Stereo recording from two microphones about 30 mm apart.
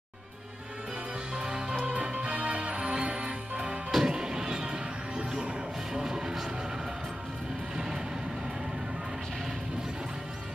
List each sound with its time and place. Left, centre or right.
1.3 s music: right
3.9 s music: right
7.7 s vehicle: centre